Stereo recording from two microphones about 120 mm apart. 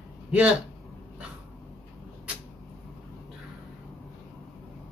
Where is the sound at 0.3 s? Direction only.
10° right (ahead or behind).